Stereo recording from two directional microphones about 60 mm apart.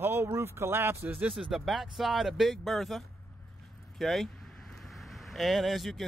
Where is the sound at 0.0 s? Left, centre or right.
Right.